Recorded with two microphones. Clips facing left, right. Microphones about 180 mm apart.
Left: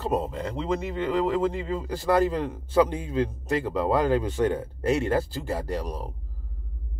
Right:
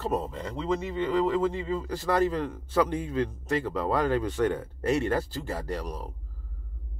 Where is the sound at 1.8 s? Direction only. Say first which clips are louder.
Left 4 dB; 30° left (ahead or behind).